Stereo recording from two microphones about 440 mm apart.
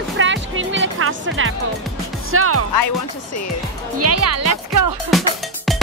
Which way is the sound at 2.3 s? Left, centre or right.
Right.